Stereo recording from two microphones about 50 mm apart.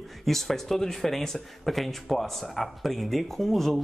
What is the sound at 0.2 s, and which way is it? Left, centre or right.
Speech, centre.